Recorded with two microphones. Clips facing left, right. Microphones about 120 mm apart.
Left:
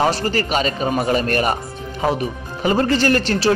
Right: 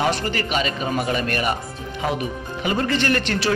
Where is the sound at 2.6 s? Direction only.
35° left (ahead or behind).